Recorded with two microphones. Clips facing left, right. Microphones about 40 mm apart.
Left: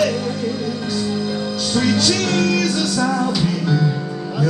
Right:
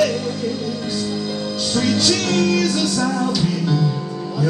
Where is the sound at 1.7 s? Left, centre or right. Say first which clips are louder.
Left 1 dB; centre.